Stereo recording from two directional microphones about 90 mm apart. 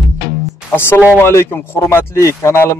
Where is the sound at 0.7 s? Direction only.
25° left (ahead or behind).